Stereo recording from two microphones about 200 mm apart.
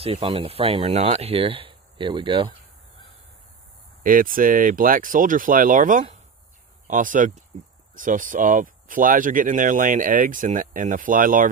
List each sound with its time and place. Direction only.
0.0 s speech: 30° right (ahead or behind)
4.0 s speech: 45° right (ahead or behind)